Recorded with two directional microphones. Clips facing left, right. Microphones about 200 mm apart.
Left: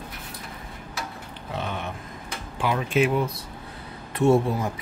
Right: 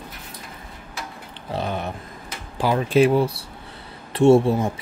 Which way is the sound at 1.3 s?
35° right (ahead or behind).